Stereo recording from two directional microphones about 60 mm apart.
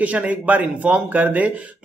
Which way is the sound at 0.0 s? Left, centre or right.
Right.